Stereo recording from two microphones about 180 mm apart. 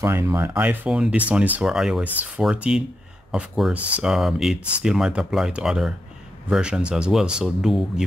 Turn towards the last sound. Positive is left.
turn(degrees=-5)  # may be behind; listen again after turning